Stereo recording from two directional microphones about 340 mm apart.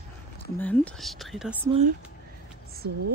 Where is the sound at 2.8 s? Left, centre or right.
Right.